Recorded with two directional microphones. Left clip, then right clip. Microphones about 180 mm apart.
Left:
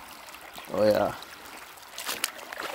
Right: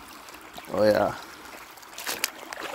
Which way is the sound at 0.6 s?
15° right (ahead or behind).